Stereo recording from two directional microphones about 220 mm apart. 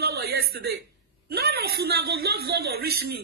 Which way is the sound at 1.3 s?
45° right (ahead or behind).